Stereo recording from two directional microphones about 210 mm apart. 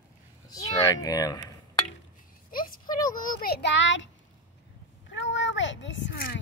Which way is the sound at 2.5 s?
40° left (ahead or behind).